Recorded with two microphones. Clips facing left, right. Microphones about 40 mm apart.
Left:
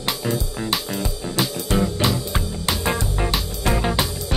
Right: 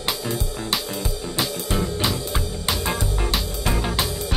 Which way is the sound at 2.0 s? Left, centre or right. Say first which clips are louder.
Left 2 dB; centre.